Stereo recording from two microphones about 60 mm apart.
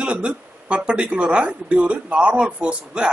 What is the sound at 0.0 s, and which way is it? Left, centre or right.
Speech, centre.